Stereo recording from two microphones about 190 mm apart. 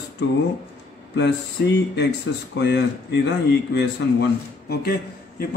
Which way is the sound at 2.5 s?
65° left (ahead or behind).